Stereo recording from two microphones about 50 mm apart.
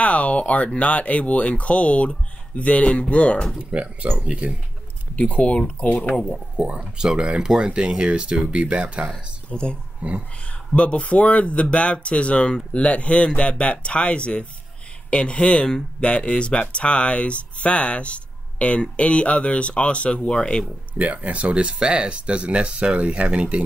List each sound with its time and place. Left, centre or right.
0.0 s speech: left
3.5 s speech: right
5.1 s speech: left
6.1 s speech: centre
6.5 s speech: right
9.5 s speech: centre
10.0 s speech: right
10.4 s speech: left
21.0 s speech: right